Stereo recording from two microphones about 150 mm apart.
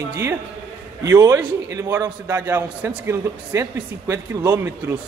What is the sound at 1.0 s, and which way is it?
A man's voice, 15° right (ahead or behind).